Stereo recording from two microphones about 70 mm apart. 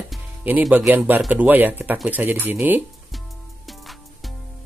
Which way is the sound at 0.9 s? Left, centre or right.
Right.